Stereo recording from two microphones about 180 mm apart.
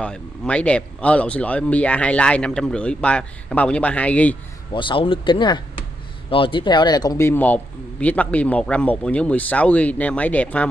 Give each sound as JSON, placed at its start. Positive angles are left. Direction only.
{"t": 0.0, "sound": "speech", "side_deg": 5}
{"t": 4.7, "sound": "speech", "side_deg": 30}